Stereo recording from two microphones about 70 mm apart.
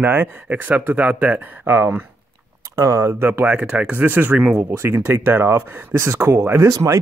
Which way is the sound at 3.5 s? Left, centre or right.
Centre.